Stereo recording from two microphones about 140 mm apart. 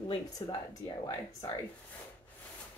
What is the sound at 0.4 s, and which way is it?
Speech, 30° left (ahead or behind).